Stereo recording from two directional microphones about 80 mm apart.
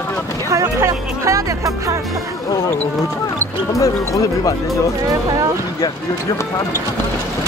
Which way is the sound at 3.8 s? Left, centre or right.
Left.